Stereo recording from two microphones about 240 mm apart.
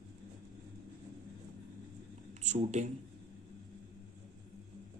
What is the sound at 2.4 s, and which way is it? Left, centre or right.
Speech, right.